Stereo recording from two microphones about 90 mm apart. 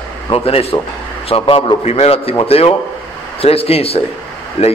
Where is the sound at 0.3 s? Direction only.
90° left.